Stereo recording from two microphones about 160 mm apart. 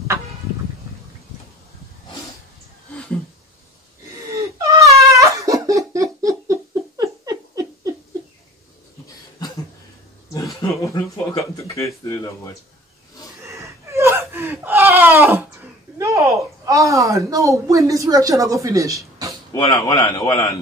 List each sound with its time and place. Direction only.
4.3 s a sound: 20° right (ahead or behind)
10.3 s speech: 20° left (ahead or behind)
13.6 s gasp: 15° right (ahead or behind)
19.5 s speech: 20° left (ahead or behind)